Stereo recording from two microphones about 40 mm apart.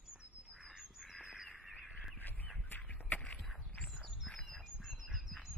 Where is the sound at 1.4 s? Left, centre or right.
Centre.